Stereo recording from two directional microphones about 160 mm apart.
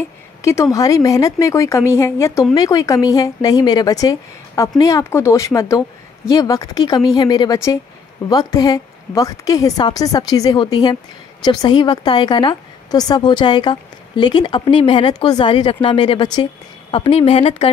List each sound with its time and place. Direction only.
0.4 s a woman's voice: 20° left (ahead or behind); by 17.6 s 40° left (ahead or behind)